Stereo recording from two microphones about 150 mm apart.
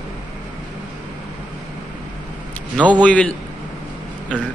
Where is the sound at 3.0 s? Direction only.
10° left (ahead or behind).